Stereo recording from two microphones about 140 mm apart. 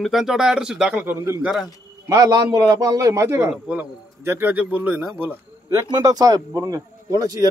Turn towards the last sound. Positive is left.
turn(degrees=-25)  # may be behind; listen again after turning